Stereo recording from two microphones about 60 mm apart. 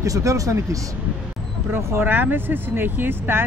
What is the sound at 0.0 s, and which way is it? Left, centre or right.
Speech, right.